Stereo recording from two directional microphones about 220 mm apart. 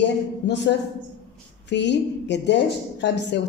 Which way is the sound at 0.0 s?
55° left (ahead or behind).